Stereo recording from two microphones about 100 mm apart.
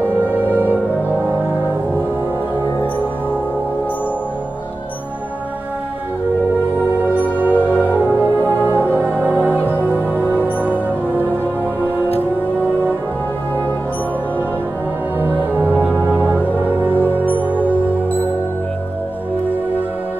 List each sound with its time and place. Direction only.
0.3 s music: 15° right (ahead or behind)
7.4 s music: 20° right (ahead or behind)
15.1 s music: 20° right (ahead or behind)